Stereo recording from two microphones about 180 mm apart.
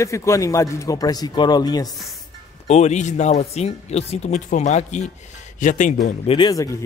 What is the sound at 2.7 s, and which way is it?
Speech, 40° left (ahead or behind).